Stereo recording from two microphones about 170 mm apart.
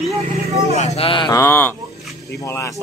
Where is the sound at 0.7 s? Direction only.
40° left (ahead or behind).